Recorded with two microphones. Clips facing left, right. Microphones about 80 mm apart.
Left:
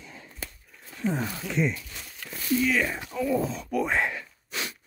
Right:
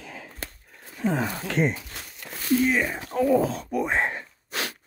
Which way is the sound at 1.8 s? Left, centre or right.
Right.